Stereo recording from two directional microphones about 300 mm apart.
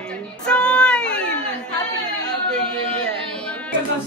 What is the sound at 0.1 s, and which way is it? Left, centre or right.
Child singing, centre.